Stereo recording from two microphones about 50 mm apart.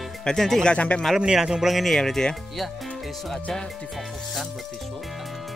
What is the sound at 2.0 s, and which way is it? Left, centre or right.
Speech, centre.